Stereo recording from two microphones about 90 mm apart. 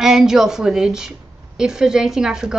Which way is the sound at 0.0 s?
5° right (ahead or behind).